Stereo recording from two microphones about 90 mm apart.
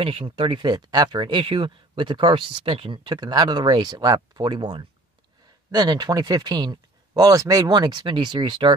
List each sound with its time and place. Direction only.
0.0 s speech: 90° right; by 1.4 s 55° right (ahead or behind)
1.4 s speech: 75° right (ahead or behind)